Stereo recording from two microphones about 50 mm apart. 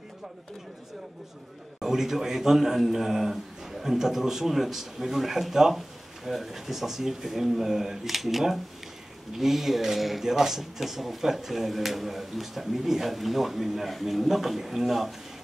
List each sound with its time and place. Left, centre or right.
1.8 s a man's voice: centre